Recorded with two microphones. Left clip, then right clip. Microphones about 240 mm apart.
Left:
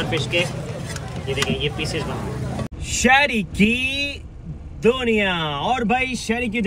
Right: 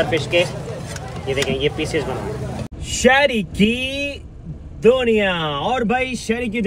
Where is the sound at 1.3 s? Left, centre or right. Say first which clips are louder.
Right 3 dB; centre.